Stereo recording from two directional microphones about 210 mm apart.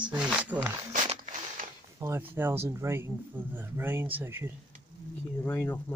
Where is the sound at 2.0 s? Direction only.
10° right (ahead or behind).